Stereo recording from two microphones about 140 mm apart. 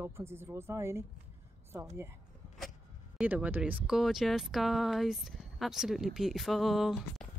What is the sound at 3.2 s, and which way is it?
Speech, 10° right (ahead or behind).